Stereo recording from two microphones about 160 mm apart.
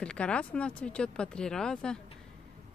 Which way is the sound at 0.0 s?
5° left (ahead or behind).